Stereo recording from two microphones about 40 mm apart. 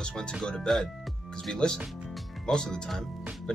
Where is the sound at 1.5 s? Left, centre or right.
Left.